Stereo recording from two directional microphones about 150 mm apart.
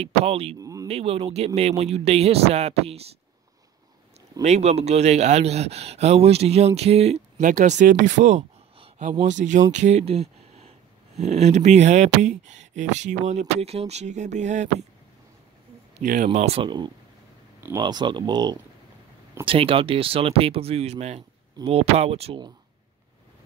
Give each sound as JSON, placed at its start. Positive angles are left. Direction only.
{"t": 0.0, "sound": "speech", "side_deg": -40}
{"t": 0.6, "sound": "a sound", "side_deg": -20}
{"t": 0.8, "sound": "speech", "side_deg": -40}
{"t": 4.4, "sound": "speech", "side_deg": -50}
{"t": 16.0, "sound": "speech", "side_deg": -55}